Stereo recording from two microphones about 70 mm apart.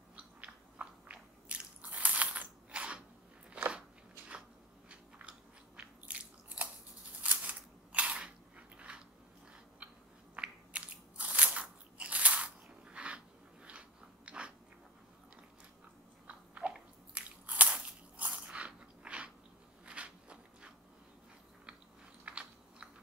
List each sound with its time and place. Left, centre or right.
0.1 s biting: centre
5.8 s biting: centre
7.2 s a sound: right
10.3 s biting: centre
16.3 s biting: centre
19.9 s walk: centre
22.2 s biting: centre